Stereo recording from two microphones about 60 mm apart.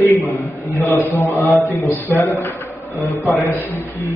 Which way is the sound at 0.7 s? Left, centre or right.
Left.